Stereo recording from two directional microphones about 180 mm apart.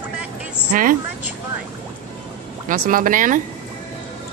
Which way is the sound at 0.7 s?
50° right (ahead or behind).